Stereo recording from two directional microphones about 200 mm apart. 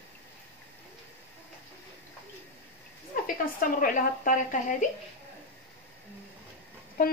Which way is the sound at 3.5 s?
45° left (ahead or behind).